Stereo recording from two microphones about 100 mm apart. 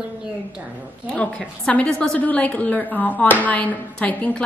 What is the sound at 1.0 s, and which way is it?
A woman's voice, 10° left (ahead or behind).